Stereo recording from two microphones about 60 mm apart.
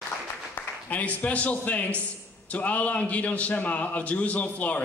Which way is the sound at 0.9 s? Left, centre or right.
Left.